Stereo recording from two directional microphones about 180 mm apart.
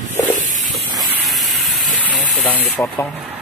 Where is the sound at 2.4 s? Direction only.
10° left (ahead or behind).